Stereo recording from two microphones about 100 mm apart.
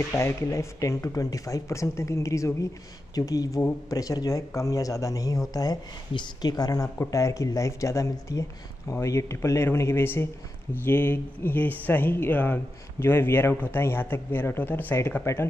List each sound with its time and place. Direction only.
0.1 s a man's voice: 30° left (ahead or behind)